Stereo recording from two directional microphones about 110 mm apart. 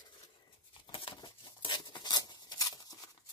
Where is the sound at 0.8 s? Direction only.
50° left (ahead or behind).